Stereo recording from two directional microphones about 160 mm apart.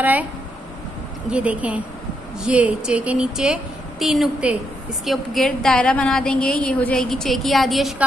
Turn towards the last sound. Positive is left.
turn(degrees=0)  # may be behind; listen again after turning